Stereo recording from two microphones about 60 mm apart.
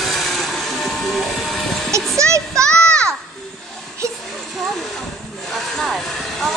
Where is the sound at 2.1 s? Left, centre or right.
Right.